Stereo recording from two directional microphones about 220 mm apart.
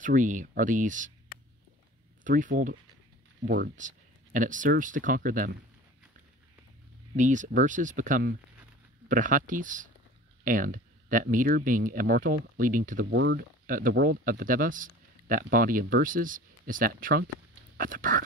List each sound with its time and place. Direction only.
0.0 s speech: 35° right (ahead or behind)
2.2 s speech: 35° right (ahead or behind)
7.2 s speech: 35° right (ahead or behind)
13.0 s speech: 50° right (ahead or behind)